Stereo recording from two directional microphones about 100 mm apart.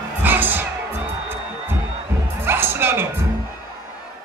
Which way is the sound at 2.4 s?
25° right (ahead or behind).